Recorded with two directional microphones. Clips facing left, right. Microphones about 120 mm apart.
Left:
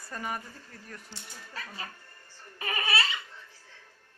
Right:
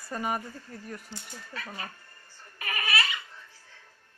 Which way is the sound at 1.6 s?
25° right (ahead or behind).